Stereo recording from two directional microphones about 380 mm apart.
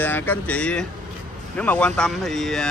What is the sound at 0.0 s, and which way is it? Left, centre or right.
Speech, centre.